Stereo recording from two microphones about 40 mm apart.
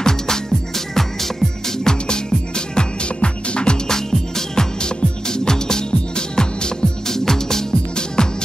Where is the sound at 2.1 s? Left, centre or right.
Left.